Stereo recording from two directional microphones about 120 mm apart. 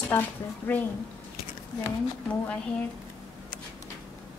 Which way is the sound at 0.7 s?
15° left (ahead or behind).